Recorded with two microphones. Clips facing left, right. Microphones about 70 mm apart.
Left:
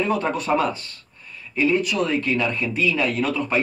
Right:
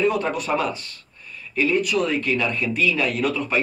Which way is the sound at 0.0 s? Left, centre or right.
Left.